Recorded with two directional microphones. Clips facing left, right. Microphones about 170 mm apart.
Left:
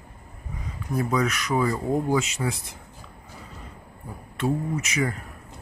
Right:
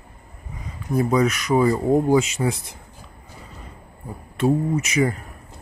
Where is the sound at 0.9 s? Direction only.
25° right (ahead or behind).